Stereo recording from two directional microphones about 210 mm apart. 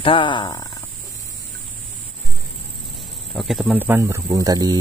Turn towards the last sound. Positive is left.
turn(degrees=-15)  # may be behind; listen again after turning